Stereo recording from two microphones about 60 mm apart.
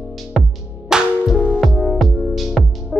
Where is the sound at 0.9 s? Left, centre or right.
Centre.